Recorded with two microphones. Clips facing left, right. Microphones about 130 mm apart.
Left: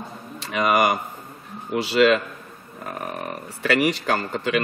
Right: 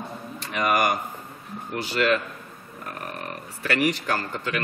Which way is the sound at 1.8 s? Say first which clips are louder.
Left 6 dB; 75° left (ahead or behind).